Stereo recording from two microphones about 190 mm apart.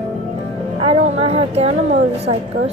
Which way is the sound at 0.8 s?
30° right (ahead or behind).